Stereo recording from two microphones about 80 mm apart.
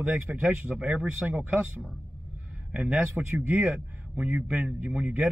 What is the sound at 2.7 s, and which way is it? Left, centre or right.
Speech, centre.